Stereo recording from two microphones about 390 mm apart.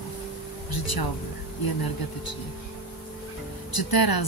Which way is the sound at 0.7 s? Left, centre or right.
Left.